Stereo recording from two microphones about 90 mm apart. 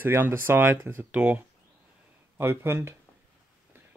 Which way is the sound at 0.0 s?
25° right (ahead or behind).